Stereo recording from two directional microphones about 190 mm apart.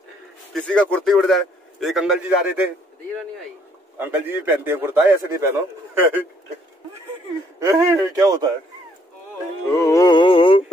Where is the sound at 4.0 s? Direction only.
10° right (ahead or behind).